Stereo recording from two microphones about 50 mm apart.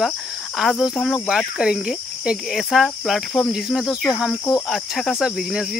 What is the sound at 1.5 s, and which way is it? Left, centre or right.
Speech, centre.